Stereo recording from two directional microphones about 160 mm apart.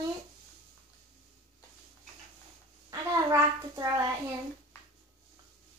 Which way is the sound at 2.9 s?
20° right (ahead or behind).